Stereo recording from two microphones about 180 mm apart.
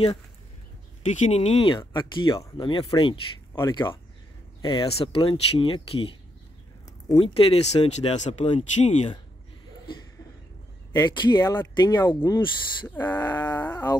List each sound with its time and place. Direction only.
1.2 s speech: 35° left (ahead or behind)
3.5 s speech: 15° left (ahead or behind); by 9.1 s 40° left (ahead or behind)
11.1 s speech: 20° left (ahead or behind)